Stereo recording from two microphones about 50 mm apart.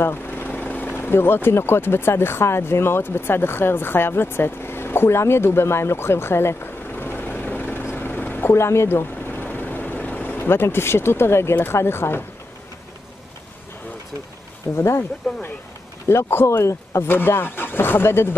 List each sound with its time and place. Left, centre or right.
0.0 s vehicle: left
0.9 s speech: left
6.9 s vehicle: left
8.5 s vehicle: left
11.5 s speech: left
14.8 s speech: left
16.1 s speech: left
16.4 s speech: left
17.1 s speech: left